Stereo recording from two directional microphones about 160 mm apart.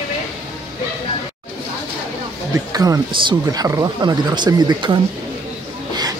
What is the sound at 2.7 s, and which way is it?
Speech, 25° right (ahead or behind).